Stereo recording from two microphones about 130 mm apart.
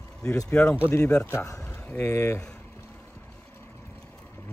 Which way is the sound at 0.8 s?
20° left (ahead or behind).